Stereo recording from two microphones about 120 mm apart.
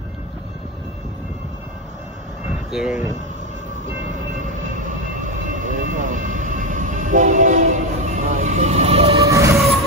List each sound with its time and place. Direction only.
2.7 s speech: 5° right (ahead or behind)
4.6 s vehicle: 90° right; by 9.2 s 55° right (ahead or behind)
9.2 s music: 25° right (ahead or behind)